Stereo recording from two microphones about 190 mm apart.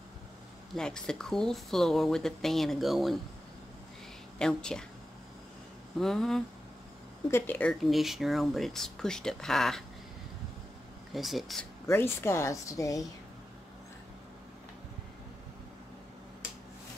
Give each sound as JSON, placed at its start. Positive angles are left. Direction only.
{"t": 0.7, "sound": "speech", "side_deg": 5}
{"t": 4.4, "sound": "speech", "side_deg": 5}
{"t": 5.9, "sound": "speech", "side_deg": 0}
{"t": 11.1, "sound": "speech", "side_deg": 0}
{"t": 11.9, "sound": "a woman's voice", "side_deg": 15}